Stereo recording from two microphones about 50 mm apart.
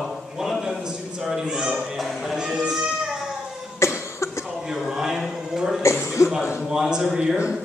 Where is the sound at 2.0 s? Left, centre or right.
Centre.